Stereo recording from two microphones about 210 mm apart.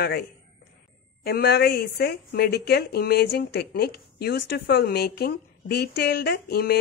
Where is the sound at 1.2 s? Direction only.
50° left (ahead or behind).